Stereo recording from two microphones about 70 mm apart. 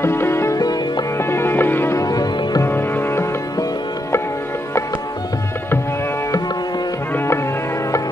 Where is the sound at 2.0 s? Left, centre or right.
Left.